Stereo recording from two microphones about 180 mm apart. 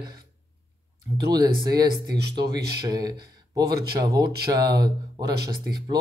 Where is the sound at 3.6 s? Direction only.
60° right (ahead or behind).